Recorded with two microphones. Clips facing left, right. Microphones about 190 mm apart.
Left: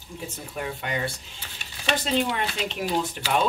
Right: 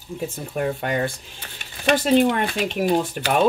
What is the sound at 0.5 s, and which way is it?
Speech, 50° right (ahead or behind).